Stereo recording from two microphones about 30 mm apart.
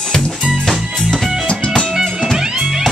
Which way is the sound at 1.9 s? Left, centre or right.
Centre.